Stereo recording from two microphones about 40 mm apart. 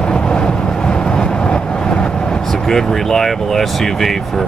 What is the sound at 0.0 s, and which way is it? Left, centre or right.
Vehicle, left.